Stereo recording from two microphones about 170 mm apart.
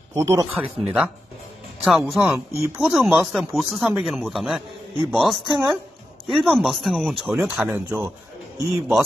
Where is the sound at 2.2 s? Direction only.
15° right (ahead or behind); by 7.3 s centre (ahead or behind).